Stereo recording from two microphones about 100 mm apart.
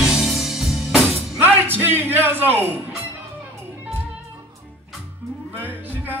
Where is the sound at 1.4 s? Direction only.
20° right (ahead or behind).